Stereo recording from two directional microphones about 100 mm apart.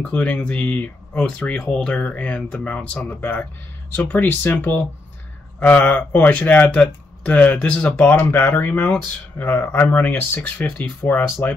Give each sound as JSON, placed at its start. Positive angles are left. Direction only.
{"t": 0.0, "sound": "speech", "side_deg": 15}